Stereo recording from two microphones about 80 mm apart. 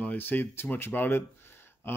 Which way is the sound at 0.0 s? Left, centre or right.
Left.